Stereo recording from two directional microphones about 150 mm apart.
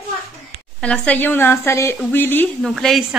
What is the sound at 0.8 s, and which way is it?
Speech, 10° left (ahead or behind).